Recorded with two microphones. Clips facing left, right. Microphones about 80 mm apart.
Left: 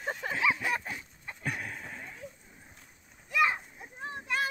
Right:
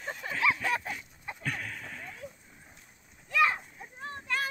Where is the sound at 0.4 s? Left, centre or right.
Centre.